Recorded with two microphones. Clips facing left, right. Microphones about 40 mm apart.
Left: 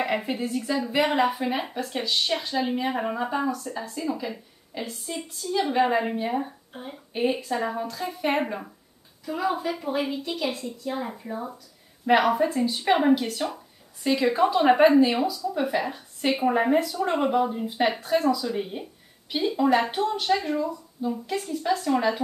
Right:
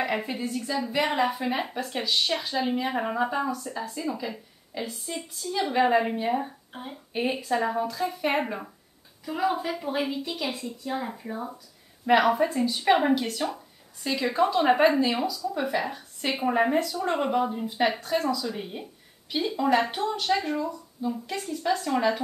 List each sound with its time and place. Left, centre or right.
0.0 s a woman's voice: centre